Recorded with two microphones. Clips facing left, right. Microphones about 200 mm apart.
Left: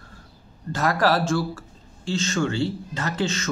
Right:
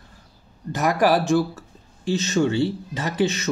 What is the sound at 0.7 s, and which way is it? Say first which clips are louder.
Speech: right 2 dB; 15° right (ahead or behind).